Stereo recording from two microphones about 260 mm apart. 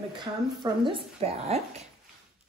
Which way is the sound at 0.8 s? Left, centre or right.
Right.